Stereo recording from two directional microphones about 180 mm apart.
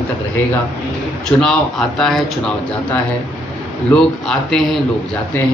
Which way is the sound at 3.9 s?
5° left (ahead or behind).